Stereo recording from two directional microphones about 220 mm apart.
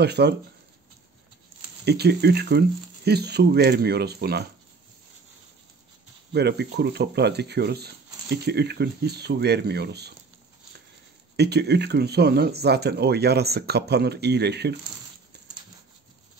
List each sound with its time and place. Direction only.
0.0 s speech: 50° right (ahead or behind)
1.9 s speech: 50° right (ahead or behind)
6.3 s speech: 50° right (ahead or behind)
11.3 s speech: 50° right (ahead or behind)